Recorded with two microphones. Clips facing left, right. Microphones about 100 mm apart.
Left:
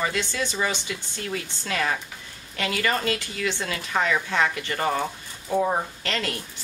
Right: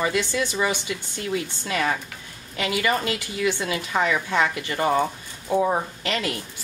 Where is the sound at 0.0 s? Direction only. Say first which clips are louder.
Right 3 dB; 15° right (ahead or behind).